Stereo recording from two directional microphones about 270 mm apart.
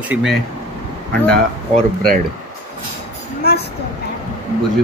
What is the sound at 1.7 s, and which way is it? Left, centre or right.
Speech, right.